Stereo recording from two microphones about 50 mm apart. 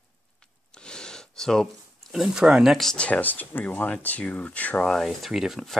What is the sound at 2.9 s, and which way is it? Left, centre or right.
Speech, left.